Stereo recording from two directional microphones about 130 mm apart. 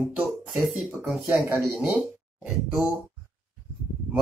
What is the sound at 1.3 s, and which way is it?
Speech, 20° right (ahead or behind).